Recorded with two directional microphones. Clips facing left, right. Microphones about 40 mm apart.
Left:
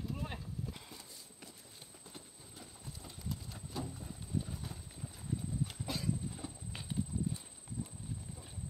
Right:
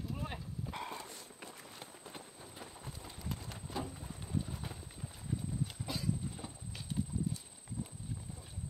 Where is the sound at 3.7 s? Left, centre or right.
Centre.